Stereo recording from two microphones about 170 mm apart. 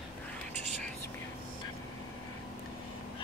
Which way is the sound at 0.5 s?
45° right (ahead or behind).